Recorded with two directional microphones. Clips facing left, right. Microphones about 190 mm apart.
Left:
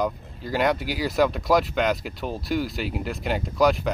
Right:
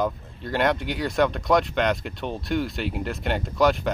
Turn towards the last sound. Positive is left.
turn(degrees=0)  # may be behind; listen again after turning